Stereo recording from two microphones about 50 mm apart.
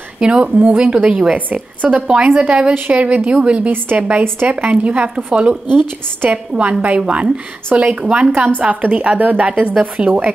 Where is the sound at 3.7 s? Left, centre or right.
Right.